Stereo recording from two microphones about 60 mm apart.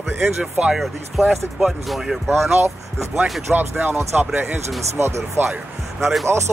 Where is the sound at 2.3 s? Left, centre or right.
Right.